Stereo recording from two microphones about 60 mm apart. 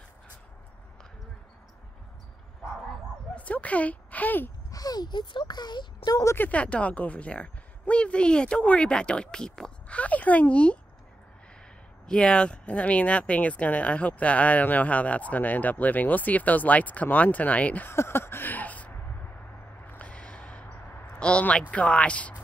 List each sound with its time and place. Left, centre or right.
3.3 s a sound: left
4.6 s speech: left
6.3 s speech: left
6.6 s speech: left
12.1 s speech: centre
17.8 s a sound: left
21.1 s speech: centre